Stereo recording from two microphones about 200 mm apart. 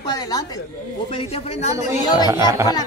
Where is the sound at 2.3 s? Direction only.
15° right (ahead or behind).